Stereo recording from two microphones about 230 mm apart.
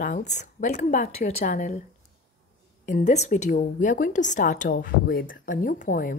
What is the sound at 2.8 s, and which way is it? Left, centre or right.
A woman's voice, left.